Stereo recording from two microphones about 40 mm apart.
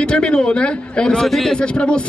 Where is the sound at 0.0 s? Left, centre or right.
Left.